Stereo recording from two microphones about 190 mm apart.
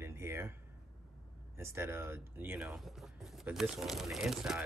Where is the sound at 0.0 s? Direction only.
15° right (ahead or behind).